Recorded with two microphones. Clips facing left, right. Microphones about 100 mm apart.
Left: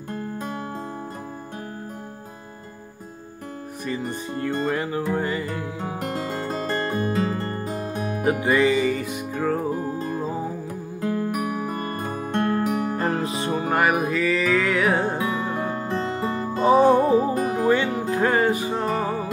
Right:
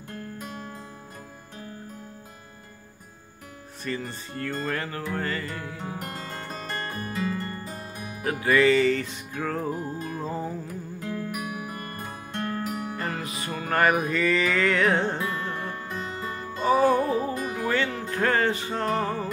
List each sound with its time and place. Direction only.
0.1 s music: 55° left (ahead or behind)
3.8 s speech: 15° left (ahead or behind)
5.1 s music: 15° left (ahead or behind); by 7.9 s 40° left (ahead or behind)
8.2 s music: 20° left (ahead or behind); by 10.5 s 5° left (ahead or behind)
11.0 s music: 45° left (ahead or behind); by 13.7 s 25° left (ahead or behind)
13.7 s music: 10° left (ahead or behind)
16.3 s music: 35° left (ahead or behind)
16.6 s music: 20° left (ahead or behind)
17.3 s music: 35° left (ahead or behind)
17.6 s music: 15° left (ahead or behind)